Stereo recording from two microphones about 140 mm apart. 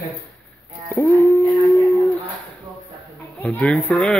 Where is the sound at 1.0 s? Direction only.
15° left (ahead or behind).